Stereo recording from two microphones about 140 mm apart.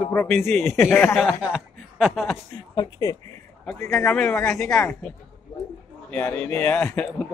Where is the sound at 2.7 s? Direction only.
25° left (ahead or behind).